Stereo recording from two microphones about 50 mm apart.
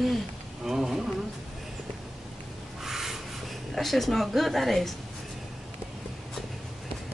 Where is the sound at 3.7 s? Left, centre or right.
Centre.